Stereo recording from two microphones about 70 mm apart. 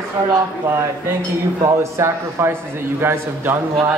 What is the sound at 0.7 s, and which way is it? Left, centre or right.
A man's voice, right.